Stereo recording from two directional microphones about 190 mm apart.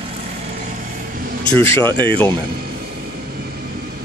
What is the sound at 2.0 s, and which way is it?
Speech, 10° left (ahead or behind).